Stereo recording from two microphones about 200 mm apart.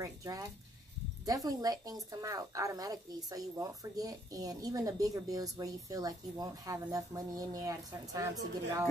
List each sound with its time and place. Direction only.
0.0 s speech: 15° right (ahead or behind)